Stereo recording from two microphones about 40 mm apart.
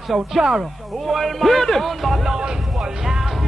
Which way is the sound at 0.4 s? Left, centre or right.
Centre.